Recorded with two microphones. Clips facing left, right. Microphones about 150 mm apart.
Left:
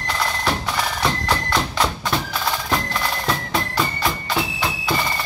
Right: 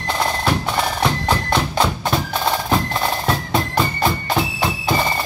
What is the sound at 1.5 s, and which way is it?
Music, 25° right (ahead or behind).